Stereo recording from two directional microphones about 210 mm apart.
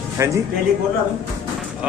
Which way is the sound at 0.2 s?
15° right (ahead or behind).